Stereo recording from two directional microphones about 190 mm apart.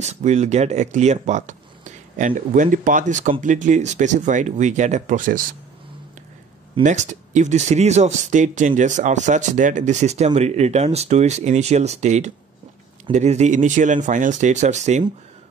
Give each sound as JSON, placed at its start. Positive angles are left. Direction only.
{"t": 0.0, "sound": "speech", "side_deg": -35}
{"t": 6.8, "sound": "speech", "side_deg": -40}